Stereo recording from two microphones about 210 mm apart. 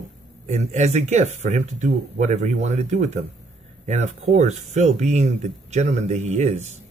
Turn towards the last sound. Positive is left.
turn(degrees=-35)  # may be behind; listen again after turning